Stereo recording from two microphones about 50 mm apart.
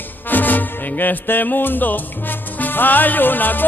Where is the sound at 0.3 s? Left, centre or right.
Left.